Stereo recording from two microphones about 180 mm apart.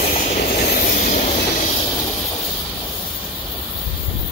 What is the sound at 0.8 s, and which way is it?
Train, 50° left (ahead or behind).